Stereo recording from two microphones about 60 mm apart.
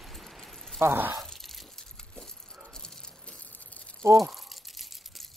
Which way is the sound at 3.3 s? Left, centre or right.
Left.